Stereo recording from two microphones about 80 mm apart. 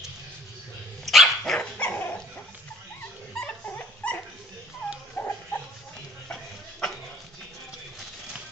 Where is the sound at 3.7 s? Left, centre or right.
Left.